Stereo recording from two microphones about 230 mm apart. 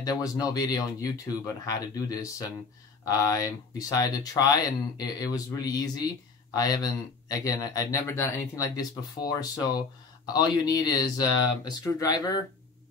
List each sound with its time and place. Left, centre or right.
0.0 s speech: centre